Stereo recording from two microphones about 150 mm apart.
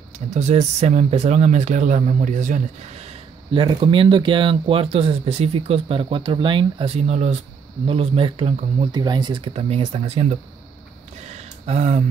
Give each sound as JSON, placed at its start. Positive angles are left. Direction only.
{"t": 0.3, "sound": "speech", "side_deg": -50}
{"t": 7.8, "sound": "speech", "side_deg": -40}
{"t": 8.9, "sound": "speech", "side_deg": -30}
{"t": 11.2, "sound": "a sound", "side_deg": -45}